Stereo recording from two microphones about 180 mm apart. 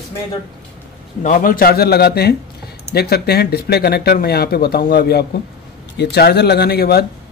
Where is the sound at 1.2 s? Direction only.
50° left (ahead or behind).